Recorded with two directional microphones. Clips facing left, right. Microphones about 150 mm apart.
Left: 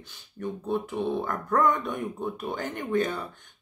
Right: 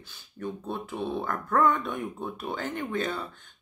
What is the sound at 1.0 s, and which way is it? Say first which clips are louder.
Speech: left 2 dB; 15° left (ahead or behind).